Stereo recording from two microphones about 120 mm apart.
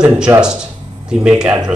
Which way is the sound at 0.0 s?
5° right (ahead or behind).